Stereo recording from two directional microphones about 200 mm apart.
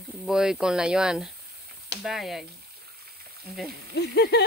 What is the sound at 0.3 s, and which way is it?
Speech, 5° right (ahead or behind).